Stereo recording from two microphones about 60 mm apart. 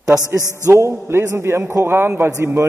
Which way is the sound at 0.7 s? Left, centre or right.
Right.